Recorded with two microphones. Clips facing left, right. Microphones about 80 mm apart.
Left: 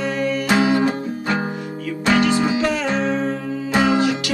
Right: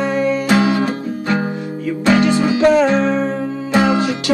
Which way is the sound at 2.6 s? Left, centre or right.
Right.